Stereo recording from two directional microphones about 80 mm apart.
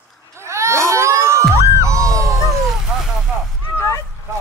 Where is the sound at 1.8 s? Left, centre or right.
Right.